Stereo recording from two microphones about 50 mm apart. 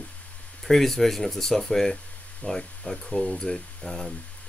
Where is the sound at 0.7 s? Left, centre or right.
Centre.